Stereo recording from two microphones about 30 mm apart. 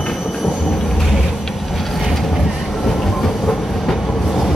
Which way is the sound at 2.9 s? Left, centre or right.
Centre.